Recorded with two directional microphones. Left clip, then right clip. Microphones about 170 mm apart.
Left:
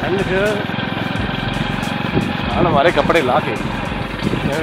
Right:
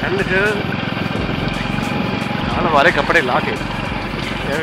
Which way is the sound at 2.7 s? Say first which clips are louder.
Right 2 dB; 65° left (ahead or behind).